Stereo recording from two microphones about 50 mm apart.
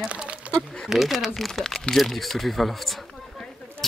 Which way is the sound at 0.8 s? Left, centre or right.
Centre.